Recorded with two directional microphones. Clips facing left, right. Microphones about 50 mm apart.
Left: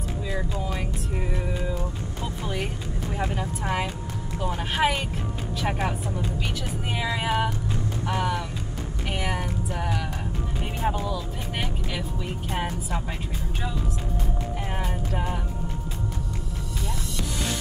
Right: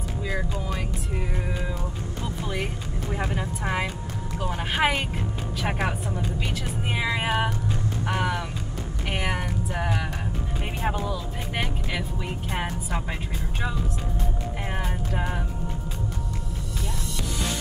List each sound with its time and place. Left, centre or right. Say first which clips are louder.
2.5 s speech: even; centre
9.1 s a sound: right 1 dB; centre
10.8 s speech: left 1 dB; centre
14.8 s speech: right 1 dB; centre